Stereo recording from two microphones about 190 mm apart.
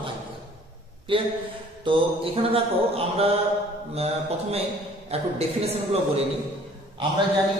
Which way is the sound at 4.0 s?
30° right (ahead or behind).